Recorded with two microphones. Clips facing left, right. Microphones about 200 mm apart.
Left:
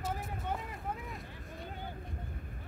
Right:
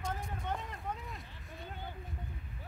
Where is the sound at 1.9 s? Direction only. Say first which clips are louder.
Left 2 dB; 50° left (ahead or behind).